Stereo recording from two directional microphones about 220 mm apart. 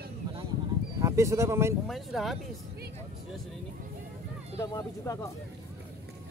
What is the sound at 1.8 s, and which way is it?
Speech, centre (ahead or behind).